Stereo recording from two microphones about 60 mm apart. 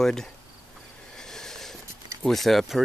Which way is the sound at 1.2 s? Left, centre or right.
Centre.